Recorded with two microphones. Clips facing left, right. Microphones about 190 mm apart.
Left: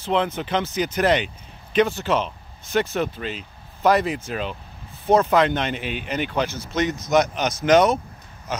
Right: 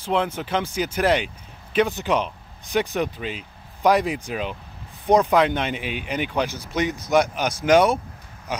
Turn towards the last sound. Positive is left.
turn(degrees=-10)  # may be behind; listen again after turning